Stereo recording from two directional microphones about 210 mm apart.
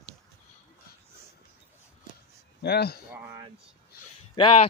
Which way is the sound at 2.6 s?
50° left (ahead or behind).